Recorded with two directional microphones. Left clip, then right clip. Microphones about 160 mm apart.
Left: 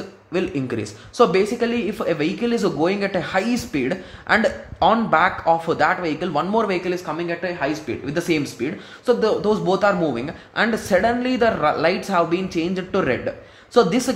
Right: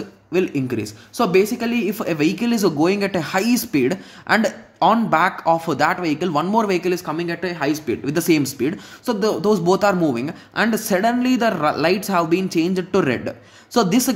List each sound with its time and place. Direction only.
0.3 s speech: 25° right (ahead or behind)